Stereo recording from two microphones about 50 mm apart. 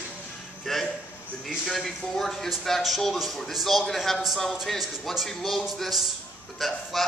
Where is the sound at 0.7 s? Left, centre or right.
Centre.